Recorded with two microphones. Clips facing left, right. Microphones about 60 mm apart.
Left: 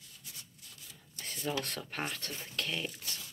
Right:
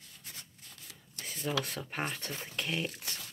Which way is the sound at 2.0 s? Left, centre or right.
Right.